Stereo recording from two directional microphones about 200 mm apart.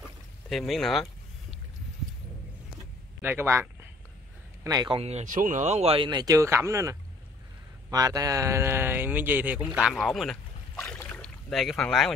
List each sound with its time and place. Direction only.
0.5 s speech: centre (ahead or behind)
3.2 s speech: 10° right (ahead or behind)
4.6 s speech: 20° right (ahead or behind); by 12.1 s centre (ahead or behind)